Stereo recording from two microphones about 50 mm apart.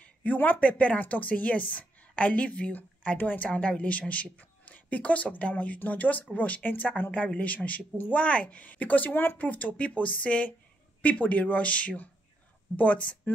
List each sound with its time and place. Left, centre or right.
0.0 s a woman's voice: left
9.4 s a woman's voice: left